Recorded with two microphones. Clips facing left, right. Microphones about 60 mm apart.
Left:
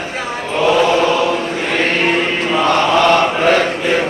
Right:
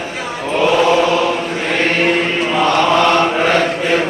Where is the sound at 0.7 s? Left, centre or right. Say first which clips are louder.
Right 1 dB; centre.